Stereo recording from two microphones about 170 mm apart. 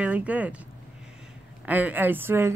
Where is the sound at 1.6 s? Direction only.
10° right (ahead or behind).